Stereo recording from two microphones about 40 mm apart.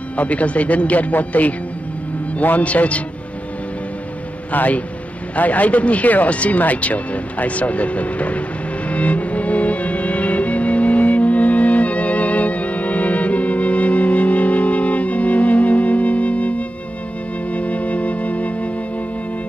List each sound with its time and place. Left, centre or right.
0.2 s speech: left
2.6 s speech: left
4.5 s speech: left
8.9 s music: left